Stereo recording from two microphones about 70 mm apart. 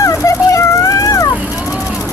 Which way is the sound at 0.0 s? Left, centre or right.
Left.